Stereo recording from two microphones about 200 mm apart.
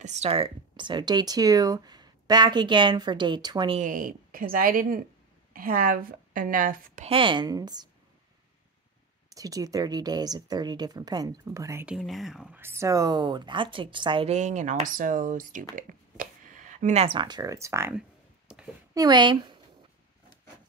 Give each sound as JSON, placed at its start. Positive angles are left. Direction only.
{"t": 0.0, "sound": "speech", "side_deg": -35}
{"t": 3.8, "sound": "a woman's voice", "side_deg": -45}
{"t": 7.1, "sound": "speech", "side_deg": -25}
{"t": 9.3, "sound": "speech", "side_deg": -15}
{"t": 18.5, "sound": "a sound", "side_deg": -5}
{"t": 18.9, "sound": "speech", "side_deg": -20}